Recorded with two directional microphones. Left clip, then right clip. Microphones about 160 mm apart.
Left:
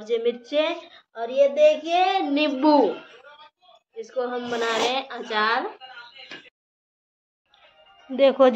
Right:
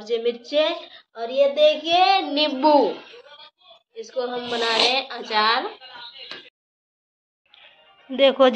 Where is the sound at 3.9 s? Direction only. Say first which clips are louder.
Right 1 dB; 10° left (ahead or behind).